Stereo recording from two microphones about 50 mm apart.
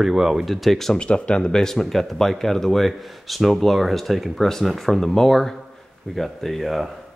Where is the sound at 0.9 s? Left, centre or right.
Left.